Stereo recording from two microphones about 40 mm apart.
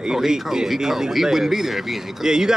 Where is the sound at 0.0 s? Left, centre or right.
Centre.